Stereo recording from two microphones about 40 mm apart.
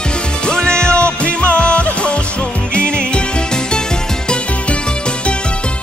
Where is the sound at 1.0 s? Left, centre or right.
Left.